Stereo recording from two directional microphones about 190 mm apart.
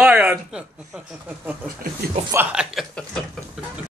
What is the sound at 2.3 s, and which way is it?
Speech, 10° right (ahead or behind).